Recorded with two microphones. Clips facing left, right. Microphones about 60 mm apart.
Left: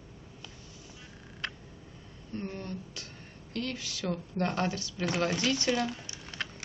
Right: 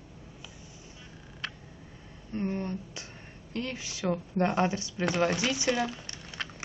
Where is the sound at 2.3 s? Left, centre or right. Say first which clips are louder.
Right 5 dB; right.